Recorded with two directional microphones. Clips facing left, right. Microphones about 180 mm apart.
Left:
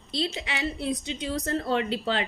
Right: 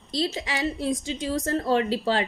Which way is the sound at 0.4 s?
40° right (ahead or behind).